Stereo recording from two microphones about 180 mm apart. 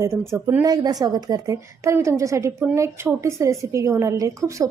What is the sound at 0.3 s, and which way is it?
A woman's voice, 15° right (ahead or behind).